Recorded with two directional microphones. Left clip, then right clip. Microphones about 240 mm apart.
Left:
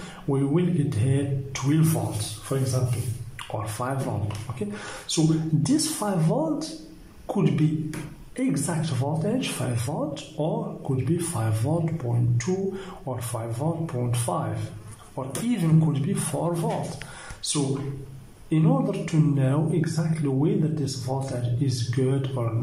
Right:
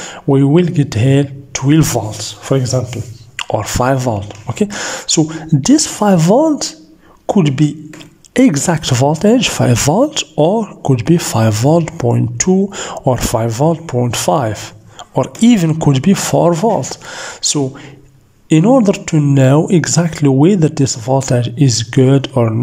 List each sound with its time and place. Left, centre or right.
0.3 s a man's voice: right